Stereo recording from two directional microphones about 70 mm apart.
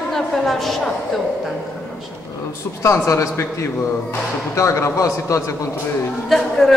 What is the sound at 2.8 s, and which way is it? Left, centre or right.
A man's voice, left.